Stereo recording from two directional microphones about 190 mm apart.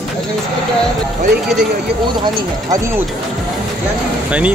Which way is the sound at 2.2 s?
15° right (ahead or behind).